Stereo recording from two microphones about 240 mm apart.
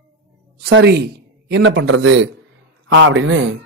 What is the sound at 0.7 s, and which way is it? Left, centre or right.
A man's voice, right.